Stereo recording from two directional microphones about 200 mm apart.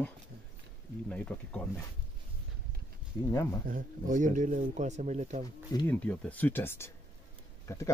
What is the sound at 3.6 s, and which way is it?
Speech, 40° right (ahead or behind).